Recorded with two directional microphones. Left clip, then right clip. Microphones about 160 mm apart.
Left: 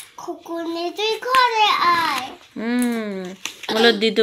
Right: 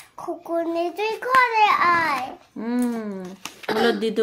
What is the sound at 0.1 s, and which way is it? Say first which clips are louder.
A child's voice: right 3 dB; 25° right (ahead or behind).